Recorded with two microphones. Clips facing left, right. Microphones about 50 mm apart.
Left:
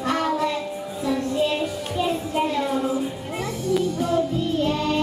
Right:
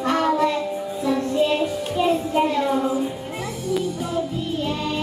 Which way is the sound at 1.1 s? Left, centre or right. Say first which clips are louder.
Right 2 dB; centre.